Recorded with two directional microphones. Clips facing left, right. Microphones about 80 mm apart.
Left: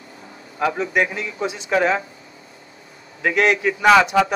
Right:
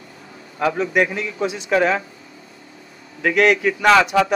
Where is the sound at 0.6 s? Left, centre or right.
Left.